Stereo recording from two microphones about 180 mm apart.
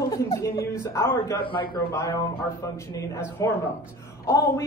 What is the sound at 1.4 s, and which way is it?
A man's voice, 30° left (ahead or behind).